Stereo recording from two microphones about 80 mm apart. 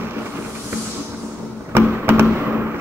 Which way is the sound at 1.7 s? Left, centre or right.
Right.